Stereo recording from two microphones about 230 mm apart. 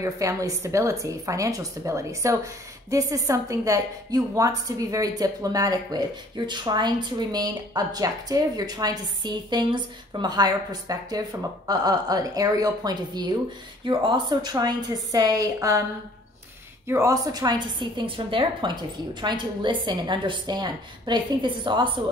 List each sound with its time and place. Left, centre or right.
0.0 s a woman's voice: centre
16.8 s a woman's voice: centre